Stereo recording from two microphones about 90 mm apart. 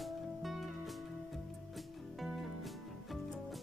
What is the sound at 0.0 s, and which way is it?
Music, centre (ahead or behind).